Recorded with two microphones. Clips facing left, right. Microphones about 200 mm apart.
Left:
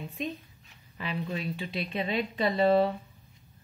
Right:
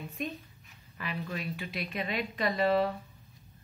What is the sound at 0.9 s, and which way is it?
A woman's voice, 25° left (ahead or behind).